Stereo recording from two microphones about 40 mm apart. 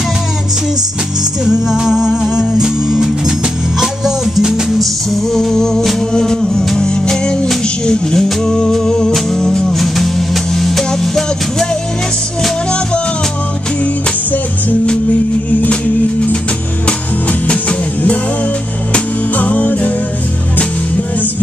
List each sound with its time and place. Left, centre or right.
1.4 s music: centre
5.3 s music: centre
8.5 s humming: left
8.7 s music: left
9.7 s music: centre
17.5 s music: left
19.3 s music: left